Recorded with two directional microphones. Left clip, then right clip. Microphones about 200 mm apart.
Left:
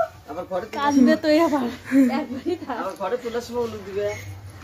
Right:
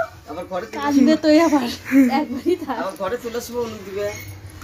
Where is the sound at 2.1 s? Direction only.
50° right (ahead or behind).